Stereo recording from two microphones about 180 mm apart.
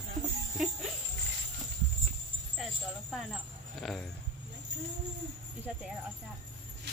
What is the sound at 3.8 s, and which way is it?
Speech, centre (ahead or behind).